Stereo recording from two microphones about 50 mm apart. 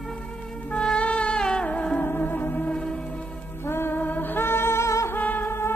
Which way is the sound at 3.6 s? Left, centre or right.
Left.